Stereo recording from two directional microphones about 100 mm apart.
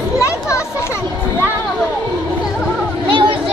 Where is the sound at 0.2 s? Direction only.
30° left (ahead or behind).